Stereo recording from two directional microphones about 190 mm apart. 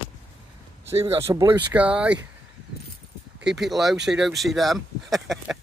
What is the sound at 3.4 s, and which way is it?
Speech, centre (ahead or behind).